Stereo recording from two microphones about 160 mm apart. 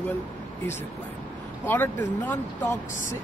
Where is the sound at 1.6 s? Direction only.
10° left (ahead or behind).